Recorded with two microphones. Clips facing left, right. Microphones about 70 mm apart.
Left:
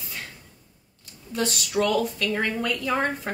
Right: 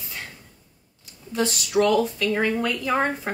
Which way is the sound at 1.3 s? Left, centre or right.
Centre.